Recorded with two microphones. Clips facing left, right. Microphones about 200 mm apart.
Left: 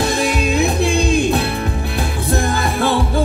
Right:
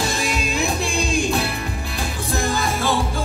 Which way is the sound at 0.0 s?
60° left (ahead or behind).